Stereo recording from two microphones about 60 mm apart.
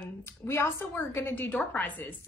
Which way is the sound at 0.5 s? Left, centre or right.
Left.